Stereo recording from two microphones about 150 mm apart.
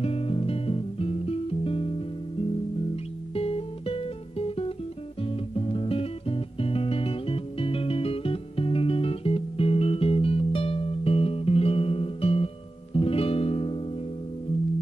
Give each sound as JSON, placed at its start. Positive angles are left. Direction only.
{"t": 0.0, "sound": "music", "side_deg": 40}
{"t": 3.3, "sound": "music", "side_deg": 40}